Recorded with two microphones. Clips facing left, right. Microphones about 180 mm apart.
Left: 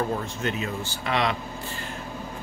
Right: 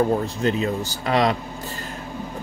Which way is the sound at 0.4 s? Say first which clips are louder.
Right 7 dB; 35° right (ahead or behind).